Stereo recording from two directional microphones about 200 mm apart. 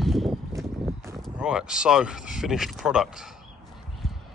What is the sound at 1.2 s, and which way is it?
Speech, 5° right (ahead or behind).